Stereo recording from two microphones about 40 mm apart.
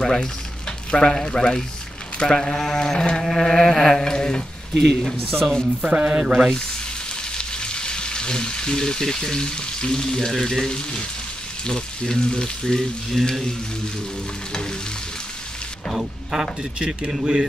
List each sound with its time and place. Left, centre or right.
0.0 s speech: centre
3.2 s a sound: centre
3.5 s speech: centre
5.9 s speech: right
7.3 s speech: left
11.6 s speech: centre
14.5 s stir: left
15.9 s speech: centre
16.7 s speech: right